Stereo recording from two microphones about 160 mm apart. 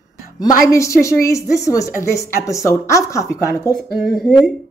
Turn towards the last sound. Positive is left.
turn(degrees=0)  # may be behind; listen again after turning